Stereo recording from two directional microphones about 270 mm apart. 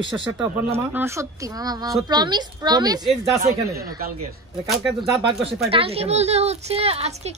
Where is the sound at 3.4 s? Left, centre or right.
Right.